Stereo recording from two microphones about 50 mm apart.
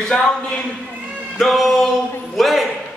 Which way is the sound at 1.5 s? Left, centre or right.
Centre.